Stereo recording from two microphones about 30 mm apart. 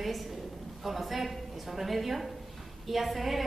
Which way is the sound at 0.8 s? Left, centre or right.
Centre.